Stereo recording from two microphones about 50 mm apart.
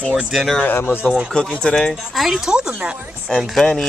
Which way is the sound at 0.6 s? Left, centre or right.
Left.